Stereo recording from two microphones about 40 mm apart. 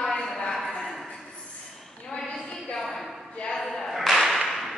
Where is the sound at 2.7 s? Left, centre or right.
Centre.